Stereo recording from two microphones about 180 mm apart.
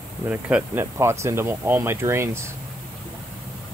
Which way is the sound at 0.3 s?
5° right (ahead or behind).